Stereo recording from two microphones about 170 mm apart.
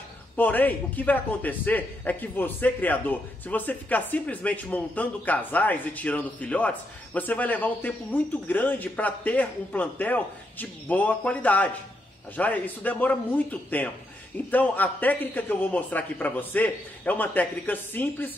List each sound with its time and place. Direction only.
0.4 s a man's voice: 10° left (ahead or behind)